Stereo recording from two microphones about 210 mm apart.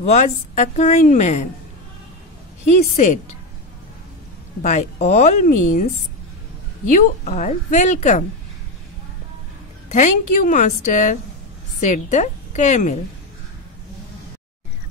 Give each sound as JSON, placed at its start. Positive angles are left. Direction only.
{"t": 0.0, "sound": "a woman's voice", "side_deg": 35}
{"t": 2.6, "sound": "a woman's voice", "side_deg": 35}
{"t": 4.6, "sound": "a woman's voice", "side_deg": 35}
{"t": 6.9, "sound": "a woman's voice", "side_deg": 35}
{"t": 9.8, "sound": "a woman's voice", "side_deg": 35}